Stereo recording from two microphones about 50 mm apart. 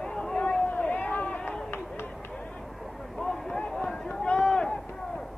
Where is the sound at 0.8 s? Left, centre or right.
Left.